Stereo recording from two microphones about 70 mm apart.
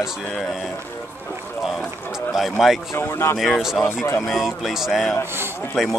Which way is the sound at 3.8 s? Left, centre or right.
Left.